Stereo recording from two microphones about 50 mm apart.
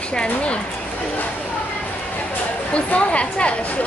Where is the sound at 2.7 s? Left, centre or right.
Left.